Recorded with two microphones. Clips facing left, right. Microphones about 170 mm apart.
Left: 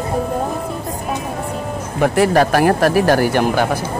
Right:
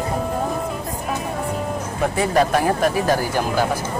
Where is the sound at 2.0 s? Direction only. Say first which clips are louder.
Left 5 dB; 75° left (ahead or behind).